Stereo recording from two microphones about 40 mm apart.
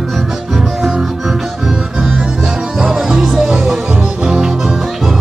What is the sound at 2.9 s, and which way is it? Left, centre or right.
Music, centre.